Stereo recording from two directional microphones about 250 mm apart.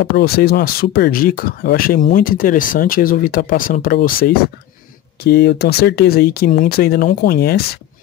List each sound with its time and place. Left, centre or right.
0.0 s speech: left